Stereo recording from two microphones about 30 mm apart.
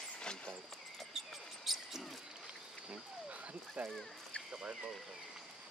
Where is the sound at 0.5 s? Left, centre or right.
Centre.